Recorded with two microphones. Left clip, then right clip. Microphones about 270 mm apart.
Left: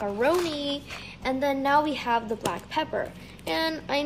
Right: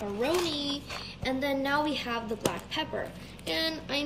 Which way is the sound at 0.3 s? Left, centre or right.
Centre.